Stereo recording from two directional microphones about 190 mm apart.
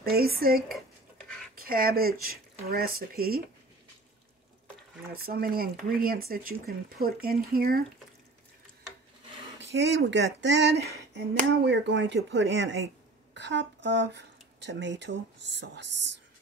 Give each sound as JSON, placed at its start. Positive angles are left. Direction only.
{"t": 0.0, "sound": "speech", "side_deg": -55}
{"t": 5.1, "sound": "speech", "side_deg": -50}
{"t": 9.6, "sound": "speech", "side_deg": -70}